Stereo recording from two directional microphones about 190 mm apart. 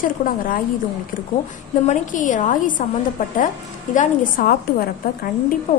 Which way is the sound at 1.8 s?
40° left (ahead or behind).